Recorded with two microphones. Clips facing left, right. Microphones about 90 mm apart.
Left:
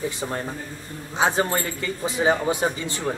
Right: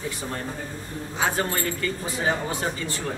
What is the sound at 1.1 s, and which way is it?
Speech, 20° left (ahead or behind).